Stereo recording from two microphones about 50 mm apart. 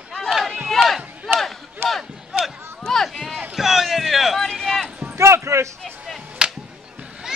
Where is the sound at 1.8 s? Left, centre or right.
Right.